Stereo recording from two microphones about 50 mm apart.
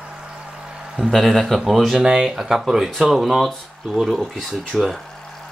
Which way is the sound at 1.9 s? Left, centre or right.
Centre.